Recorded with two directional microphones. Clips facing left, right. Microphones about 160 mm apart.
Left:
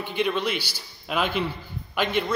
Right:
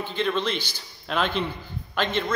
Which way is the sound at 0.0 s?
15° left (ahead or behind).